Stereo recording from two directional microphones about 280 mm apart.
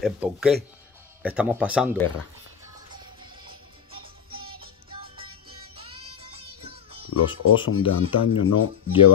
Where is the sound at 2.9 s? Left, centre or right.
Centre.